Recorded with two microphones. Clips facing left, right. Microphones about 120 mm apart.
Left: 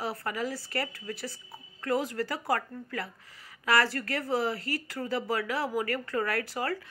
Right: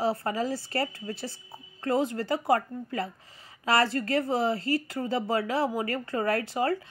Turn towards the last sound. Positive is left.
turn(degrees=-25)  # may be behind; listen again after turning